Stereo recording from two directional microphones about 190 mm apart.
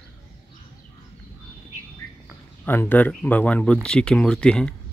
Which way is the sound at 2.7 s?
10° left (ahead or behind).